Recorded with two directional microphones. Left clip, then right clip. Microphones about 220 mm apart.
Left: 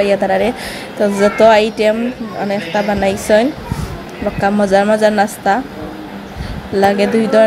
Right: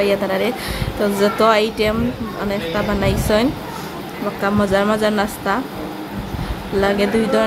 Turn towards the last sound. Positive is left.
turn(degrees=10)  # may be behind; listen again after turning